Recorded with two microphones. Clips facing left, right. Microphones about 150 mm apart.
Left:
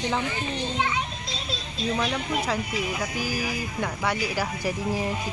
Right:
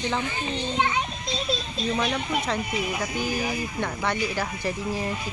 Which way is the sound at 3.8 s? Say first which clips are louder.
Left 1 dB; 10° left (ahead or behind).